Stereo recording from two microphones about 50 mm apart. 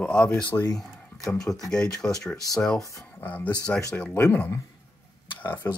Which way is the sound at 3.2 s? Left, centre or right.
Left.